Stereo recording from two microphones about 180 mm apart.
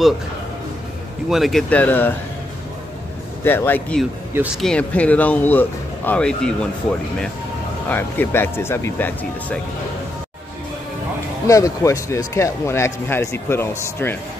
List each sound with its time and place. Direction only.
1.3 s speech: centre (ahead or behind)
3.4 s speech: 10° left (ahead or behind)
7.9 s speech: 10° left (ahead or behind)
11.4 s speech: 15° left (ahead or behind)